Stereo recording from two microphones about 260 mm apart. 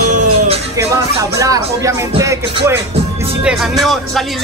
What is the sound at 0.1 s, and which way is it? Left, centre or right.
Music, right.